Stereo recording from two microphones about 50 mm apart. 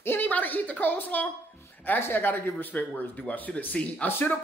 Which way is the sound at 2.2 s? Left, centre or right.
Left.